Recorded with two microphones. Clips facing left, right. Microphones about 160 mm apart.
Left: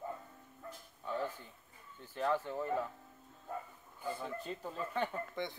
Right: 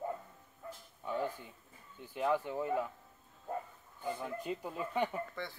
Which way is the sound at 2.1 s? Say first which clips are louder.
Right 2 dB; 10° right (ahead or behind).